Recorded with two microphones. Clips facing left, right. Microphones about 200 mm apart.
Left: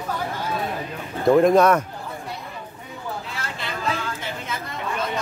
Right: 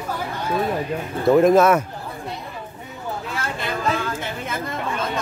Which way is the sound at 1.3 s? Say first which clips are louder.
Right 1 dB; 5° right (ahead or behind).